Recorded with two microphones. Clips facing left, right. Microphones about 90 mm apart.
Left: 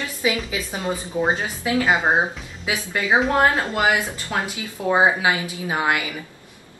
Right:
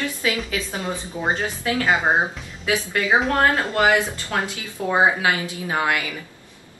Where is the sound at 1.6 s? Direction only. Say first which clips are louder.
Left 2 dB; 15° left (ahead or behind).